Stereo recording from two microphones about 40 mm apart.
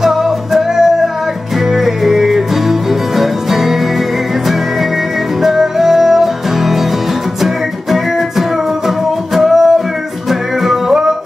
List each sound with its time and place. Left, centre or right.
0.0 s music: centre
5.4 s music: centre